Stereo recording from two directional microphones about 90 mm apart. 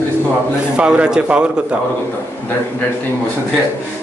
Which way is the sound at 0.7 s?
10° right (ahead or behind).